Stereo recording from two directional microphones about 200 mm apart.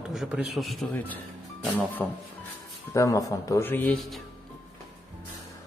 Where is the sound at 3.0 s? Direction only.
15° left (ahead or behind).